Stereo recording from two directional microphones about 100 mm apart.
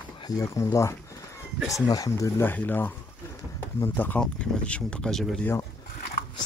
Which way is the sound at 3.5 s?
25° left (ahead or behind).